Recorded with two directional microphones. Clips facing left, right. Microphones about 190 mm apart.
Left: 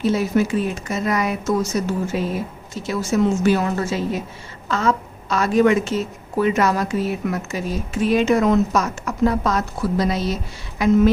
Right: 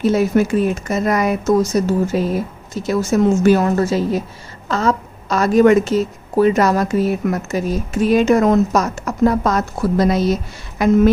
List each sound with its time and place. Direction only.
0.0 s a woman's voice: 50° right (ahead or behind)